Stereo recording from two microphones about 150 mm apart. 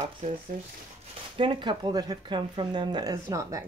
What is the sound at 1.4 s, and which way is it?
Speech, 35° right (ahead or behind).